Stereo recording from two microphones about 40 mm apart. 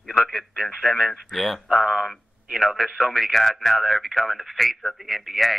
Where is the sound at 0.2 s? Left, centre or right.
Centre.